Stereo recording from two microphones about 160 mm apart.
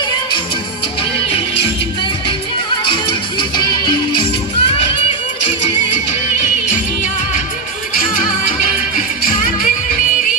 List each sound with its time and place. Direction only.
2.8 s music: 35° left (ahead or behind)
7.9 s music: 55° left (ahead or behind)